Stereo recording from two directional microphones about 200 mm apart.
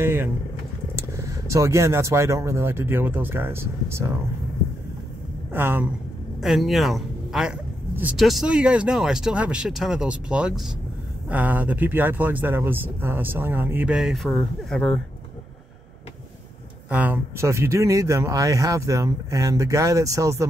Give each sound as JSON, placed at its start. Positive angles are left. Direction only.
{"t": 0.0, "sound": "speech", "side_deg": -10}
{"t": 5.5, "sound": "speech", "side_deg": -10}
{"t": 16.9, "sound": "speech", "side_deg": -10}